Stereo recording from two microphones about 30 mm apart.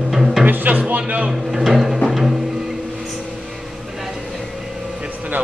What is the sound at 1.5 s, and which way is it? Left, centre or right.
Music, centre.